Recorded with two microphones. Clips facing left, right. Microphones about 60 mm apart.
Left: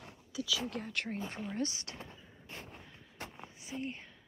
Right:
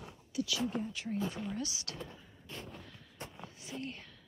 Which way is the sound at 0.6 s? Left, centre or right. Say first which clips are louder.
Right 1 dB; left.